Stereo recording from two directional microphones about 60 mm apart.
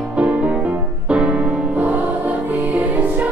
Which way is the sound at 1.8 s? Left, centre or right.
Right.